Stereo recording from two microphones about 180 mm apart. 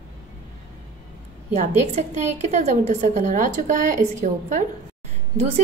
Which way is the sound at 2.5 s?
40° right (ahead or behind).